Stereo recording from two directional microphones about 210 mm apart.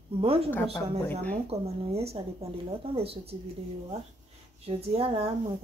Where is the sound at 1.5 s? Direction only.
30° right (ahead or behind).